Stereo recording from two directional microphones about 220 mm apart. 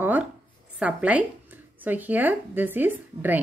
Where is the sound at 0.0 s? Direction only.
10° right (ahead or behind).